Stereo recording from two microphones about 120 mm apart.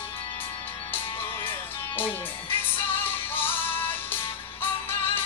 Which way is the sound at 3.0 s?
15° left (ahead or behind).